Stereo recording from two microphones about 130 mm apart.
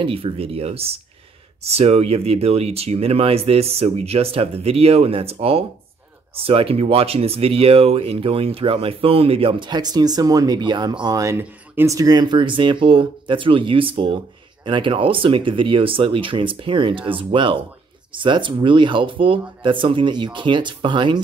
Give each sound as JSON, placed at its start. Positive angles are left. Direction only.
{"t": 0.0, "sound": "speech", "side_deg": -45}